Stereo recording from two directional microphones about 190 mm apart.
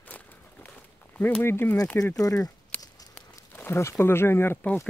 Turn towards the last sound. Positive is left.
turn(degrees=10)  # may be behind; listen again after turning